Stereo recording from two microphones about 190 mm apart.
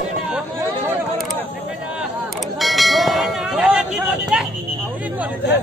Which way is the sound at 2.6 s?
Centre (ahead or behind).